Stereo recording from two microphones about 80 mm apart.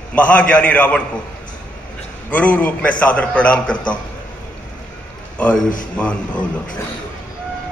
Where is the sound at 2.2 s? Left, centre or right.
Centre.